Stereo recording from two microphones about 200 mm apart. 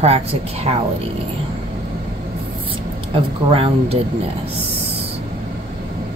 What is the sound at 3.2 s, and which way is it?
Speech, 30° right (ahead or behind).